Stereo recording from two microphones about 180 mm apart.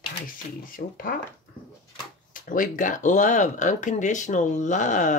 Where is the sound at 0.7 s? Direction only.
50° left (ahead or behind).